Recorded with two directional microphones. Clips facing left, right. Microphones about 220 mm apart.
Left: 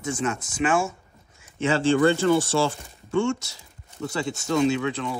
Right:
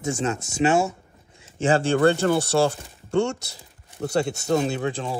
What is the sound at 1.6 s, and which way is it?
Speech, 50° right (ahead or behind).